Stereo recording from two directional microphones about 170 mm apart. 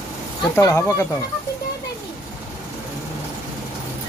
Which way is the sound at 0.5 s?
15° left (ahead or behind).